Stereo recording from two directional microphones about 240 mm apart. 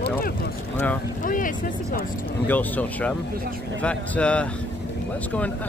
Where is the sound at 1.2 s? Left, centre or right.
Left.